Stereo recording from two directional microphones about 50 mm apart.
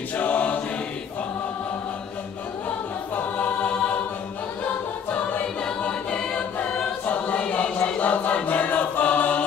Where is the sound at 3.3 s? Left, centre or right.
Left.